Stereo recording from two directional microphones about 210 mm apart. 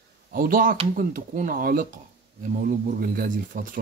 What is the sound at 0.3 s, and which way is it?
Speech, 40° right (ahead or behind).